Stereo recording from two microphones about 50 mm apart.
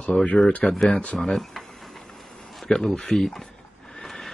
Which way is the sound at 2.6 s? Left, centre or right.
Centre.